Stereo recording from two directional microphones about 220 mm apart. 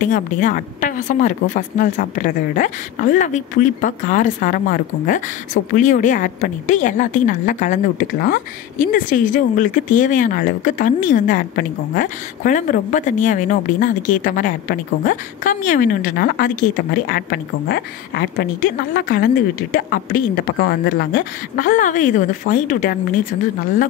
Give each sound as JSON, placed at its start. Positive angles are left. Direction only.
{"t": 0.0, "sound": "a woman's voice", "side_deg": 35}